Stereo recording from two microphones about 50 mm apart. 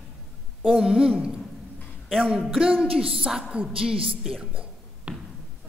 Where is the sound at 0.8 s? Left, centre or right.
Centre.